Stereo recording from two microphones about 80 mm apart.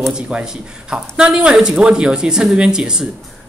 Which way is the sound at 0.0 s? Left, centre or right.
Centre.